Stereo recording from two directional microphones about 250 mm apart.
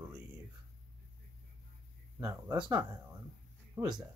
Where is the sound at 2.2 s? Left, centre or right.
Centre.